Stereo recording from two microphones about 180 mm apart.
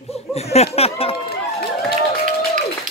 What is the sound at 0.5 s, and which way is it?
Speech, 35° left (ahead or behind).